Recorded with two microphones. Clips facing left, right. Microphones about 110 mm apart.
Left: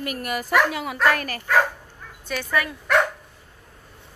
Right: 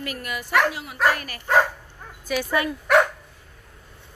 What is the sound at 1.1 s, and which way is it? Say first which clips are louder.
Speech: left 6 dB; 45° left (ahead or behind).